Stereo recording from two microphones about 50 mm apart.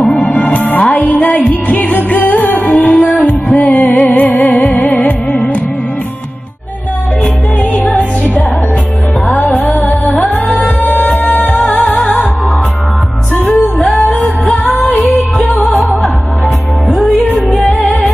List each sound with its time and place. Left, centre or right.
0.0 s music: centre
0.3 s music: left
2.6 s music: left
7.9 s music: left
9.3 s music: left
15.4 s music: left
17.3 s music: left
17.6 s music: centre